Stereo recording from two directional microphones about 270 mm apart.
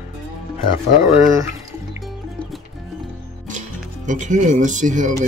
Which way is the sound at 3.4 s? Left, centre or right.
Right.